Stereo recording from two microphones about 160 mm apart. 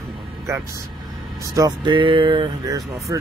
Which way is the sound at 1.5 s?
25° right (ahead or behind).